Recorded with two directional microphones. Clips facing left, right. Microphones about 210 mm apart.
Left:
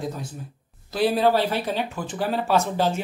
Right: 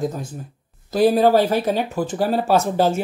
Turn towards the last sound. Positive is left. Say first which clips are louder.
# right 4 dB
turn(degrees=-45)  # may be behind; listen again after turning